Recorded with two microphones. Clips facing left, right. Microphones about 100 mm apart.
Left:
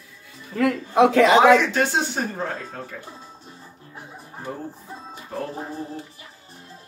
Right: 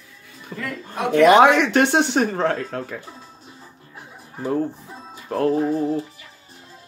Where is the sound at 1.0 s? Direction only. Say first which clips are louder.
Left 9 dB; 90° left.